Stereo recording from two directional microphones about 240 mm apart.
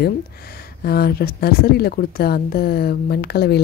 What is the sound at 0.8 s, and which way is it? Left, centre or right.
A woman's voice, left.